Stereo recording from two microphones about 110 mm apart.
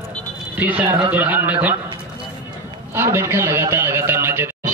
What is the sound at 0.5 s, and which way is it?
A man's voice, 15° right (ahead or behind).